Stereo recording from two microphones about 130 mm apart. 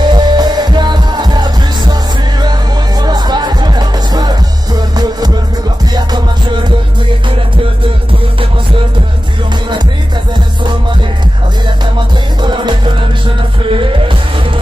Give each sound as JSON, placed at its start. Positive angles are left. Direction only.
{"t": 0.0, "sound": "music", "side_deg": -35}
{"t": 3.0, "sound": "music", "side_deg": -30}
{"t": 12.4, "sound": "music", "side_deg": -35}